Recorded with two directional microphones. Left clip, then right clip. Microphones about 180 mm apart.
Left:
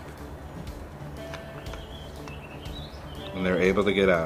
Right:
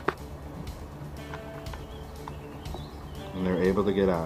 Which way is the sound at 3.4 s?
30° left (ahead or behind).